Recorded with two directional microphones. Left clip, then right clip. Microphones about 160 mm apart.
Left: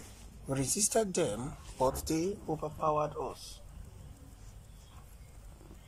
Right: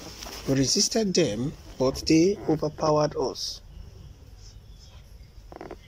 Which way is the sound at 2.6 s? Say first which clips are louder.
Right 7 dB; 40° right (ahead or behind).